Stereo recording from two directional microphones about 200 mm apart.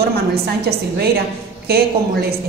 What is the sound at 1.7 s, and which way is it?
Speech, 50° right (ahead or behind).